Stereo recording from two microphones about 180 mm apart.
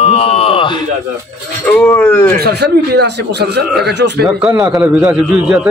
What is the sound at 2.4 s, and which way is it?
Speech, 65° right (ahead or behind).